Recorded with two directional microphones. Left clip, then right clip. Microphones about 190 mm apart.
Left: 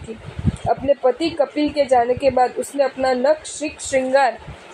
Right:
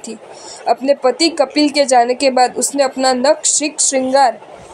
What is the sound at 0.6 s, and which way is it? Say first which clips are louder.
A woman's voice: right 4 dB; 45° right (ahead or behind).